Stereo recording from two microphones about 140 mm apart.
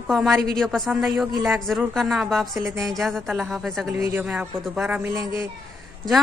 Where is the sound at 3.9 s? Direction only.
15° right (ahead or behind).